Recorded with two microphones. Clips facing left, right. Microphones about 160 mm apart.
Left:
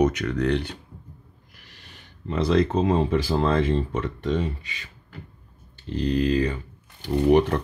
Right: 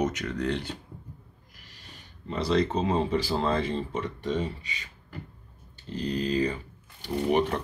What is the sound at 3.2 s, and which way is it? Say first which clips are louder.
Speech: left 4 dB; 50° left (ahead or behind).